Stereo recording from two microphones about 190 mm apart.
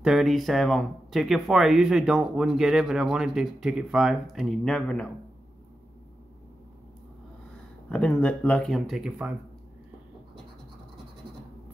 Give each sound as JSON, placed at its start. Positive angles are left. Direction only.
{"t": 0.0, "sound": "speech", "side_deg": 0}
{"t": 7.9, "sound": "speech", "side_deg": 5}